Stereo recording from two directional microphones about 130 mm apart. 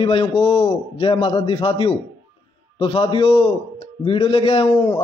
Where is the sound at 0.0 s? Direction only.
45° left (ahead or behind).